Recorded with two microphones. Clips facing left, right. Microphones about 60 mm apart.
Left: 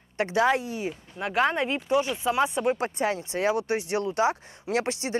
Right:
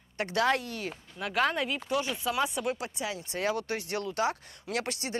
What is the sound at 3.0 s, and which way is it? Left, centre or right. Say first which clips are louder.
Speech: left 8 dB; left.